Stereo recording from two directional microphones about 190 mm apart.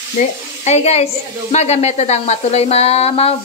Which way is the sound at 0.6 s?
35° left (ahead or behind).